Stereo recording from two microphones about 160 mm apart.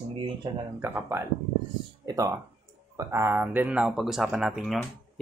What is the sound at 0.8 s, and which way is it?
Speech, 15° right (ahead or behind).